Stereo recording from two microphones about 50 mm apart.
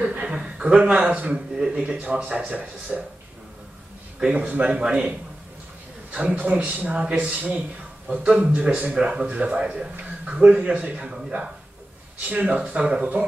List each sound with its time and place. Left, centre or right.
0.2 s a man's voice: centre
4.2 s speech: centre
6.1 s speech: right
12.3 s speech: right